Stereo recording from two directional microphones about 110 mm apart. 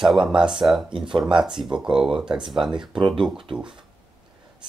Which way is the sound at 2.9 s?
50° right (ahead or behind).